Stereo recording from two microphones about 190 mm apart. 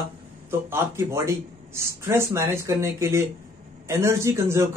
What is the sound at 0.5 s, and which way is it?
Speech, 15° right (ahead or behind).